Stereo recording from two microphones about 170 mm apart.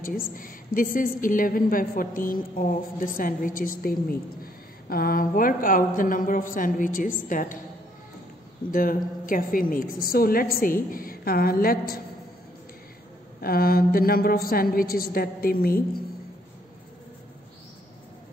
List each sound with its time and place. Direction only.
0.2 s a woman's voice: 55° left (ahead or behind)
8.7 s a woman's voice: 55° left (ahead or behind)
13.4 s a woman's voice: 60° left (ahead or behind)